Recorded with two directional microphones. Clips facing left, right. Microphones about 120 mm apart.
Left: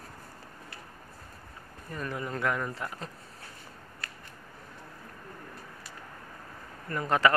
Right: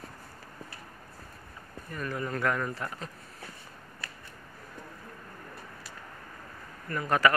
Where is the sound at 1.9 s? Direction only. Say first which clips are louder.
Right 1 dB; 20° left (ahead or behind).